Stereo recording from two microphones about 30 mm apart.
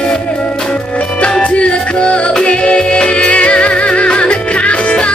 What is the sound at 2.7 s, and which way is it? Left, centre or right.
Music, left.